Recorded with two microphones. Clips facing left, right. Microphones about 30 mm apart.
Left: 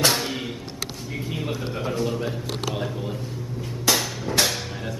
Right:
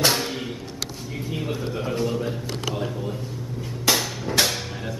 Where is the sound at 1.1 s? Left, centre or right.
Centre.